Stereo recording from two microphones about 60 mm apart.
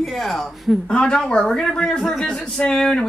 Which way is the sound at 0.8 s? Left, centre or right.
Centre.